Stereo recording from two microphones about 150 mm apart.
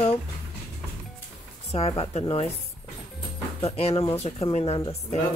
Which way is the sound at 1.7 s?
40° left (ahead or behind).